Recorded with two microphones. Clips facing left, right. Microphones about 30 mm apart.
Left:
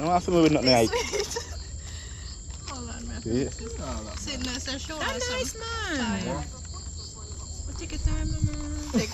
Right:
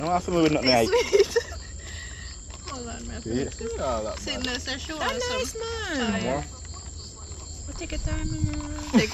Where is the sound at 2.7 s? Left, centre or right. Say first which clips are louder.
Right 3 dB; right.